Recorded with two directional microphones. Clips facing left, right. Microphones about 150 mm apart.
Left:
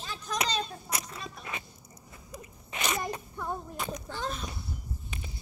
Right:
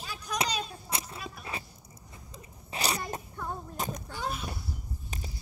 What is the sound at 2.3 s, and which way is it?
Zipper, 35° right (ahead or behind).